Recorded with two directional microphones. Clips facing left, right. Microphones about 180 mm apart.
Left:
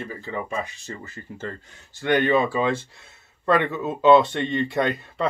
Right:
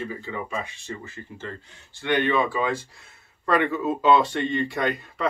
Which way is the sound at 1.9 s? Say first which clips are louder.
Left 3 dB; 40° left (ahead or behind).